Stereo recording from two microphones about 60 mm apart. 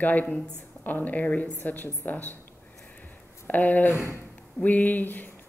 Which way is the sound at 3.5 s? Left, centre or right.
Left.